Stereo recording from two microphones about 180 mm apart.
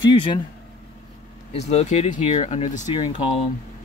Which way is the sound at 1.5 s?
40° left (ahead or behind).